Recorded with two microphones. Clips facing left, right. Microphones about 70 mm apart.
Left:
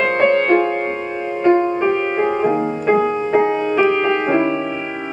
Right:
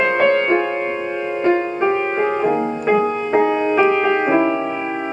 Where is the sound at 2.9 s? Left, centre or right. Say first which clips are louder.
Left 1 dB; left.